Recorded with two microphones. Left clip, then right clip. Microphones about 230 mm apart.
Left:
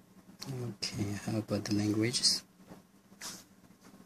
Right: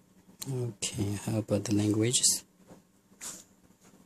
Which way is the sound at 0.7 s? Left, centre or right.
Right.